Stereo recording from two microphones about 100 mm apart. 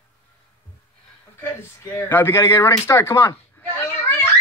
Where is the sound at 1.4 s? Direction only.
25° left (ahead or behind).